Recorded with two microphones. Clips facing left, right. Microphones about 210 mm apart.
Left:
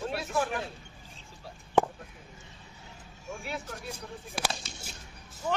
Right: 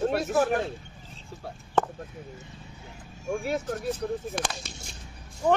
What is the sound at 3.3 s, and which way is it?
Speech, 45° right (ahead or behind).